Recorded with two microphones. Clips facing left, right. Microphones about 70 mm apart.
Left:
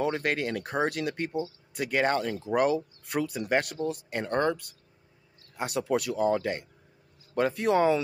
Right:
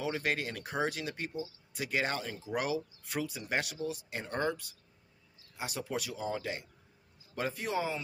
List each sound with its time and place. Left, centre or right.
0.0 s speech: left